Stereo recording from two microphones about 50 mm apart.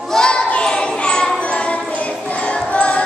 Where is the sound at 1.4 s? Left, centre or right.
Left.